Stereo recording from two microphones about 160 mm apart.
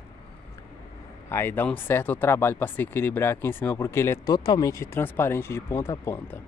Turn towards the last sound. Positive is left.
turn(degrees=15)  # may be behind; listen again after turning